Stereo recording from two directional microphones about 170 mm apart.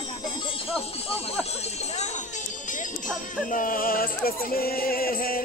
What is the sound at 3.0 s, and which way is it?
Music, 50° left (ahead or behind).